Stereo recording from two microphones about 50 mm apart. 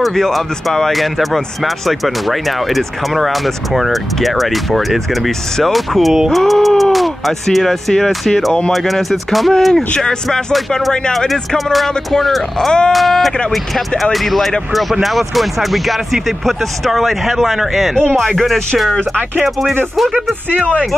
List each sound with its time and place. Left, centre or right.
0.0 s speech: centre
11.1 s speech: centre
12.5 s speech: centre
12.9 s speech: centre